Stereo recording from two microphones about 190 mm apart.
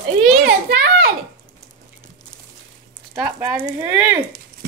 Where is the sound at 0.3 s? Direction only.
55° right (ahead or behind).